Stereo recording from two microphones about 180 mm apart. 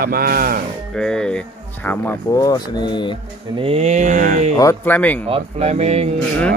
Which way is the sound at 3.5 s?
35° right (ahead or behind).